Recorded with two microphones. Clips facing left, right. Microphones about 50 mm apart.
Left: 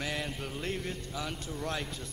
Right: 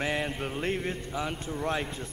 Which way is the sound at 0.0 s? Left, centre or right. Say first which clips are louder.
Right 6 dB; right.